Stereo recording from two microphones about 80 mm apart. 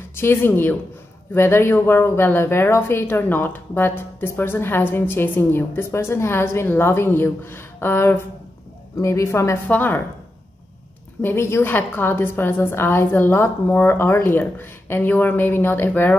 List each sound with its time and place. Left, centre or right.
0.1 s a woman's voice: left
9.7 s speech: left
11.1 s speech: left